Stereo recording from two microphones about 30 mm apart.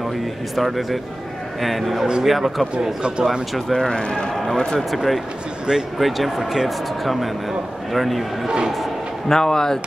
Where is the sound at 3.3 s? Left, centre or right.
Centre.